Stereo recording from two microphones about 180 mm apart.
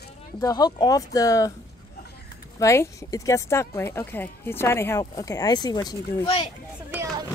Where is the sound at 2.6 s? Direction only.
15° left (ahead or behind).